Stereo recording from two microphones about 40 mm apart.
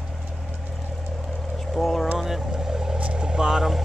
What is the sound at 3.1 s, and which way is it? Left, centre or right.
Vehicle, centre.